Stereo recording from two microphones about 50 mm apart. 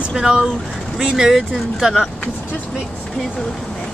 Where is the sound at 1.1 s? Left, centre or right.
Centre.